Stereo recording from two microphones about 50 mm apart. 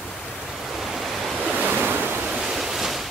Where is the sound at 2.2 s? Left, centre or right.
Centre.